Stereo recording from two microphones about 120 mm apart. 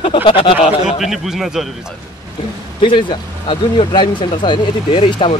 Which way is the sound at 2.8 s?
45° left (ahead or behind).